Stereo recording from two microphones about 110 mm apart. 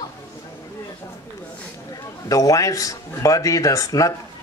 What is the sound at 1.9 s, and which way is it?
A man's voice, 35° left (ahead or behind).